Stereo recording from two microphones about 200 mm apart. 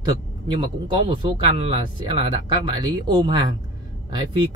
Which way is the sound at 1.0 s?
25° right (ahead or behind).